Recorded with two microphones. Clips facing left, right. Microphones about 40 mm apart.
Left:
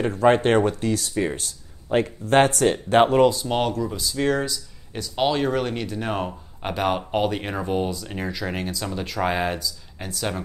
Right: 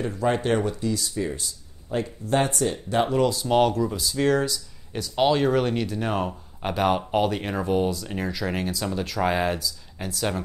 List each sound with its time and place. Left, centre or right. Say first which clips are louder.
0.0 s speech: left 6 dB; left
3.3 s speech: right 1 dB; centre